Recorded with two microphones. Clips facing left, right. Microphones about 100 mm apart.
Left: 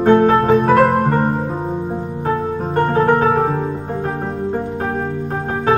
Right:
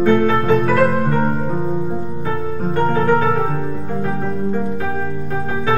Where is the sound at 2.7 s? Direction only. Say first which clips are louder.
Left 2 dB; 35° left (ahead or behind).